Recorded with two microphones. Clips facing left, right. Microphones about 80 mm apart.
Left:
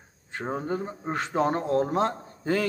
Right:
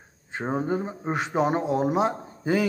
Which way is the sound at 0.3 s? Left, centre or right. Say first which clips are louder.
Right 3 dB; centre.